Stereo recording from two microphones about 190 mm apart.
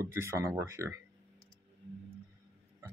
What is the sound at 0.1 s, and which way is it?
Speech, 15° right (ahead or behind).